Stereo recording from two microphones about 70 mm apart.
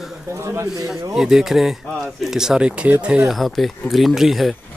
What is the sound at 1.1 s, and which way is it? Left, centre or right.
Speech, centre.